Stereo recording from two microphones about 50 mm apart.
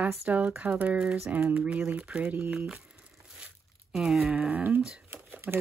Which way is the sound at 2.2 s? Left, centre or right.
Right.